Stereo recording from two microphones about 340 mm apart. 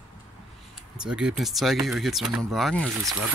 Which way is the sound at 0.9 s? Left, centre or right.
Centre.